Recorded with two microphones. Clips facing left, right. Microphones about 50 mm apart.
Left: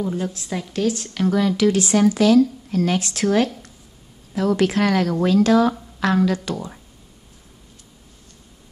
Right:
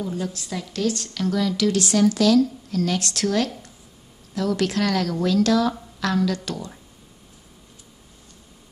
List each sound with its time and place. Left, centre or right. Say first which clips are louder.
0.0 s a woman's voice: left 3 dB; left
1.1 s a woman's voice: left 4 dB; left